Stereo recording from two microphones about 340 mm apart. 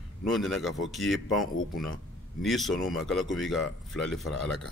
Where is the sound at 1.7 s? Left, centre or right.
Left.